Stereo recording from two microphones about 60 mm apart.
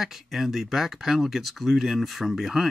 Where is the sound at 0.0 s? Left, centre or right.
Centre.